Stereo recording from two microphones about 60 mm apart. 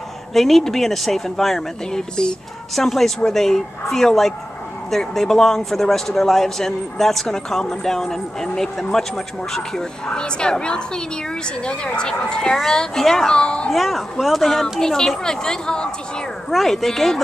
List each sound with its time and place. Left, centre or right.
0.3 s a man's voice: centre
13.3 s speech: centre
13.7 s a man's voice: centre